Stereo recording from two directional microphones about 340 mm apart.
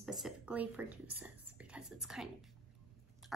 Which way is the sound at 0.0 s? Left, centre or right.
Centre.